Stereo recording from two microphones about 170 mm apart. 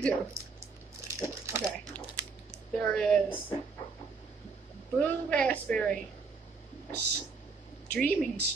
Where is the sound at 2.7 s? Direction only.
5° left (ahead or behind).